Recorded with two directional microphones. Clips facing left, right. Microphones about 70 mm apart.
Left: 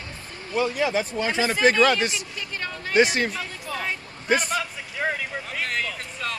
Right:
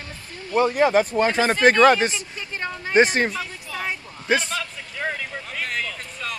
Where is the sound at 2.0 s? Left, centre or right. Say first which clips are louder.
Right 2 dB; right.